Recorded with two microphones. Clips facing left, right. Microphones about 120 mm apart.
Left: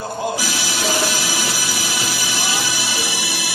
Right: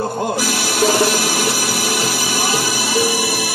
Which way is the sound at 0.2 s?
55° right (ahead or behind).